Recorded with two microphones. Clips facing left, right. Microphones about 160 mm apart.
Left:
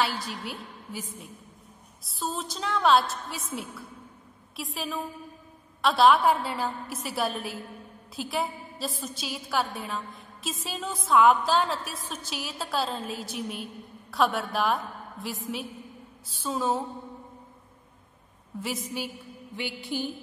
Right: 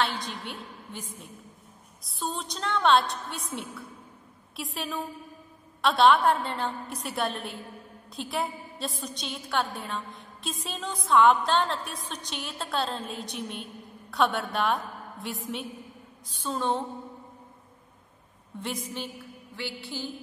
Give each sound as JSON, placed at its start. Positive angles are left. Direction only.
{"t": 0.0, "sound": "a woman's voice", "side_deg": 5}
{"t": 18.6, "sound": "a woman's voice", "side_deg": 5}
{"t": 19.5, "sound": "a sound", "side_deg": 15}